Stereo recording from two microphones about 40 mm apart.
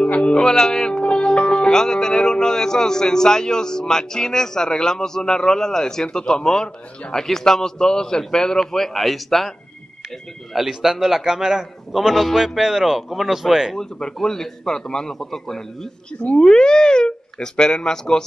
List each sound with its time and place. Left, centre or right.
0.0 s speech: left; by 9.5 s centre
10.5 s a man's voice: centre
12.5 s a man's voice: centre
13.7 s speech: centre